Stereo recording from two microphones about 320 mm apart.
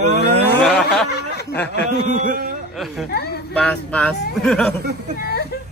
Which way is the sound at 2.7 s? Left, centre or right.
Centre.